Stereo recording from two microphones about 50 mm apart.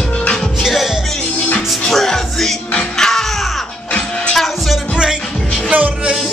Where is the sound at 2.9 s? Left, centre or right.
Centre.